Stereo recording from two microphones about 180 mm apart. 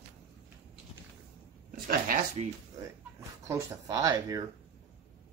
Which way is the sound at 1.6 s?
50° right (ahead or behind).